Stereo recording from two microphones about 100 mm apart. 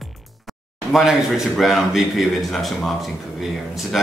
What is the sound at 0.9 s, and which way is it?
Speech, centre (ahead or behind).